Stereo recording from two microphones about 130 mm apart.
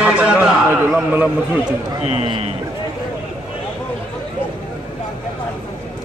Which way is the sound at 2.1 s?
50° right (ahead or behind).